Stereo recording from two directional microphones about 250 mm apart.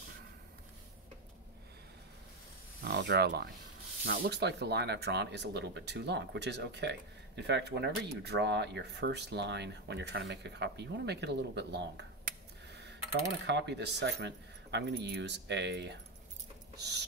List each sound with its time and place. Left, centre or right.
2.8 s speech: right